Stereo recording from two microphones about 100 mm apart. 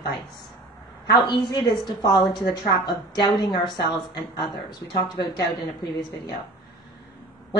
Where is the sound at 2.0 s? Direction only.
45° left (ahead or behind).